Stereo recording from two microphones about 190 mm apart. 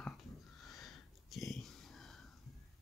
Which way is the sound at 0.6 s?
Centre (ahead or behind).